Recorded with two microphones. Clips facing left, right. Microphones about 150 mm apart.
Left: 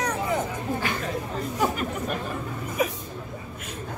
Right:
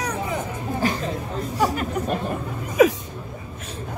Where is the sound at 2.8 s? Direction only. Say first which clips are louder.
Right 11 dB; 90° right.